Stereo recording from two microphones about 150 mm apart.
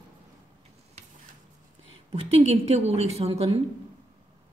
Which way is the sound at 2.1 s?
45° right (ahead or behind).